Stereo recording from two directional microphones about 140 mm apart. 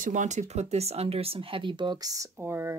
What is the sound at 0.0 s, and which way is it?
Speech, 65° right (ahead or behind).